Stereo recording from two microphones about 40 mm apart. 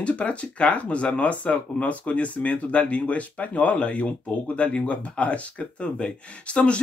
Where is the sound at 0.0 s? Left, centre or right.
Left.